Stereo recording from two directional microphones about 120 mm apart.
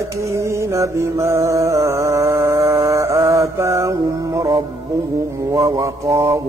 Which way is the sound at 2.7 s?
25° right (ahead or behind).